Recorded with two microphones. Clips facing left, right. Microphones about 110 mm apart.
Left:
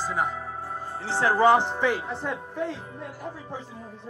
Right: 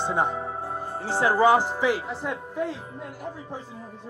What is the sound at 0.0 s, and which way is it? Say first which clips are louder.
Speech: right 3 dB; 25° right (ahead or behind).